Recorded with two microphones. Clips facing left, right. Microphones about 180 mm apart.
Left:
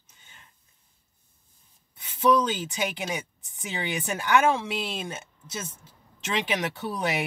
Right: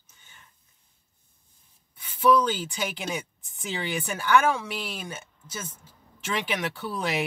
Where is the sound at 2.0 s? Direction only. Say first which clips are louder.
Right 1 dB; 20° left (ahead or behind).